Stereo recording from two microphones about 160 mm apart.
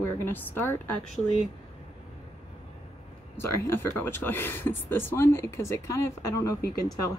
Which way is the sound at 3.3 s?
15° left (ahead or behind).